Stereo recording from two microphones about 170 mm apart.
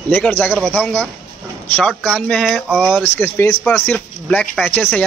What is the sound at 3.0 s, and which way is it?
Speech, 15° left (ahead or behind).